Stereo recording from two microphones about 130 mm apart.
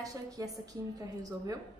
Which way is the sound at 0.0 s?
25° right (ahead or behind).